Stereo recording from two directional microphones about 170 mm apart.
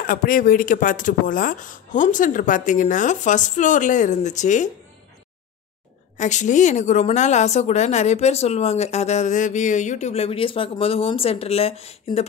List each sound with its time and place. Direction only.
0.0 s speech: 55° left (ahead or behind)
6.1 s a woman's voice: 45° left (ahead or behind)